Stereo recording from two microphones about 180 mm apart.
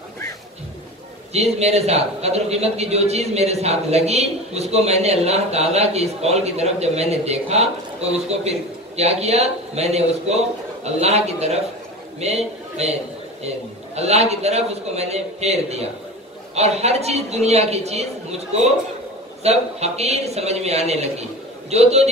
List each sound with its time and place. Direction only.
1.3 s a man's voice: 35° right (ahead or behind)
13.9 s a man's voice: 35° right (ahead or behind)